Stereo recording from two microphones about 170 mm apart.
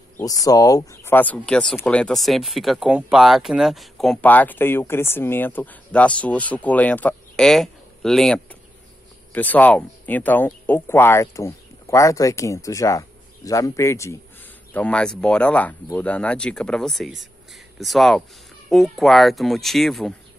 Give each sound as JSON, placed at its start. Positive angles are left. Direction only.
{"t": 0.2, "sound": "speech", "side_deg": 20}